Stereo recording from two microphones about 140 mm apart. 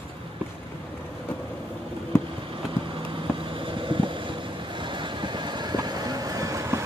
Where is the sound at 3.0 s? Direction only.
40° right (ahead or behind).